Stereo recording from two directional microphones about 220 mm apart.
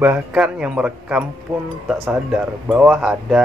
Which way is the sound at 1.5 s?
20° right (ahead or behind).